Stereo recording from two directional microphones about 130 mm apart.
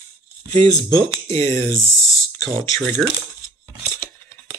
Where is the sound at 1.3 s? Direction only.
20° left (ahead or behind).